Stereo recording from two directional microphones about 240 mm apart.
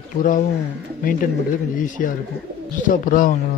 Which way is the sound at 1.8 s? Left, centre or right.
Left.